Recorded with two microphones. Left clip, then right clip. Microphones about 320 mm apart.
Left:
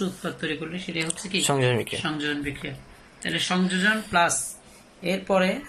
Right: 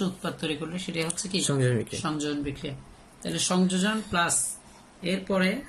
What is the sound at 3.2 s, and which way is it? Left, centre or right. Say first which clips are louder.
Speech: left 2 dB; centre.